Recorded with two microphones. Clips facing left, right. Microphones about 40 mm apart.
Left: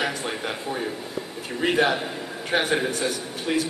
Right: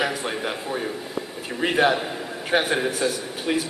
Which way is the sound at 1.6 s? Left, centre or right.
Centre.